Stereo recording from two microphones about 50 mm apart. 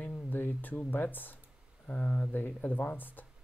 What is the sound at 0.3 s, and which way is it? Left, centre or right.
Speech, left.